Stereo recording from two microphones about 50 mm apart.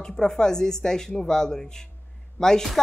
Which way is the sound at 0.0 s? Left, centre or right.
Centre.